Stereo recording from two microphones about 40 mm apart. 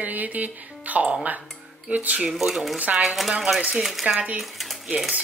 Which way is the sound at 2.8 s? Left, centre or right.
Right.